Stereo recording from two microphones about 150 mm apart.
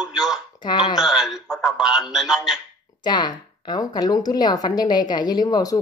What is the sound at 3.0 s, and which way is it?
Speech, 30° left (ahead or behind).